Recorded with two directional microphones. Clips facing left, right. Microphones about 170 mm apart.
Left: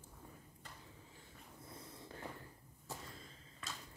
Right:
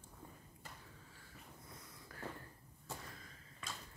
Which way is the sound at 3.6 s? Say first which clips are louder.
Even; centre (ahead or behind).